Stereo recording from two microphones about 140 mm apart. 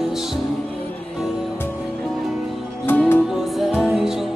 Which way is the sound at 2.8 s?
15° left (ahead or behind).